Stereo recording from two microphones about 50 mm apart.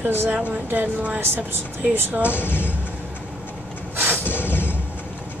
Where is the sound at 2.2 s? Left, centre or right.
Left.